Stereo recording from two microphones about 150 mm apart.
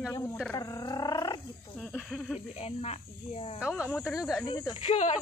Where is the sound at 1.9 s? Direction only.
5° left (ahead or behind).